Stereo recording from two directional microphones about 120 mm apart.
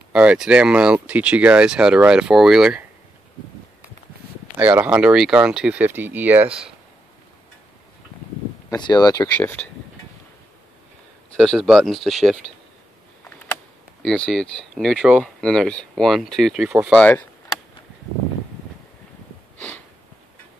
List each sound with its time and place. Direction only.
0.1 s speech: 10° right (ahead or behind)
4.6 s speech: 10° right (ahead or behind)
8.6 s speech: 35° left (ahead or behind)
9.3 s speech: 15° left (ahead or behind)
11.3 s speech: centre (ahead or behind)
14.0 s speech: 5° left (ahead or behind)
16.6 s speech: 20° right (ahead or behind)
16.9 s speech: 10° left (ahead or behind)